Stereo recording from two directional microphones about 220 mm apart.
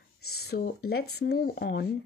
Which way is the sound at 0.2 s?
80° left.